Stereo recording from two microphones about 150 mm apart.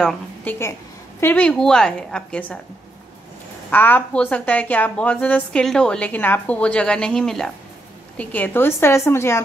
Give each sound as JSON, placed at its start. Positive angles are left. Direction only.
{"t": 0.0, "sound": "a woman's voice", "side_deg": 5}
{"t": 3.7, "sound": "a woman's voice", "side_deg": 10}